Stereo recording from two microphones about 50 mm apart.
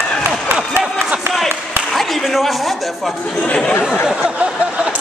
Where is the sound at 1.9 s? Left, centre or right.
Centre.